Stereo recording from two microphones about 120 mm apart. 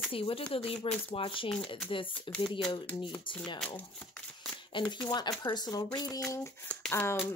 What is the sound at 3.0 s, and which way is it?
Speech, 45° left (ahead or behind).